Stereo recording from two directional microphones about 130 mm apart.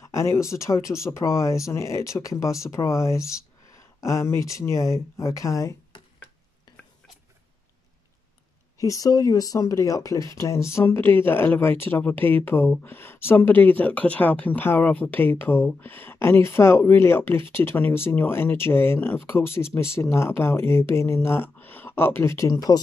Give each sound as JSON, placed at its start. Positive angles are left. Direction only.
{"t": 0.0, "sound": "speech", "side_deg": 20}
{"t": 8.7, "sound": "speech", "side_deg": 25}